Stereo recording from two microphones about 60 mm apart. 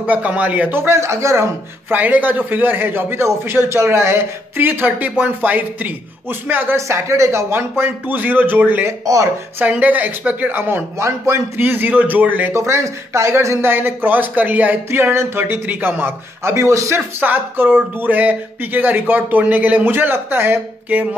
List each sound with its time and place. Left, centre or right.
0.0 s speech: right
0.7 s speech: right
1.9 s speech: right
6.9 s speech: right
9.0 s speech: right
9.6 s speech: right
11.1 s speech: right
11.5 s speech: right
12.5 s speech: right
13.7 s speech: right
14.9 s speech: right
17.2 s speech: right